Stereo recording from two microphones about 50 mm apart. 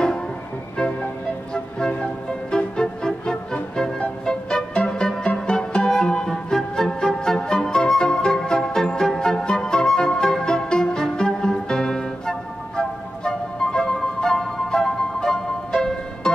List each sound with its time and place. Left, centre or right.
1.5 s music: centre